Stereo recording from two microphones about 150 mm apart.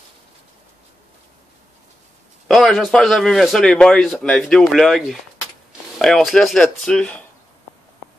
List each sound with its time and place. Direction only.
2.4 s a man's voice: centre (ahead or behind)